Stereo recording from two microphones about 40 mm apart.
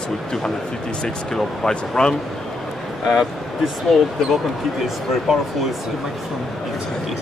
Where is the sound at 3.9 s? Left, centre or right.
Centre.